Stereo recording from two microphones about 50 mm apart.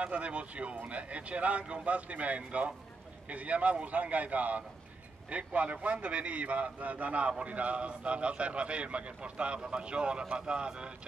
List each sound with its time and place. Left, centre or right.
0.0 s a man's voice: right